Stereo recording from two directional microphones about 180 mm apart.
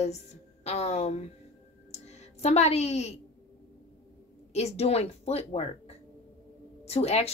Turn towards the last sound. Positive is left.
turn(degrees=35)  # may be behind; listen again after turning